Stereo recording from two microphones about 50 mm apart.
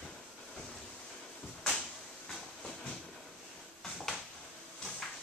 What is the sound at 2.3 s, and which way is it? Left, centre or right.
Train, centre.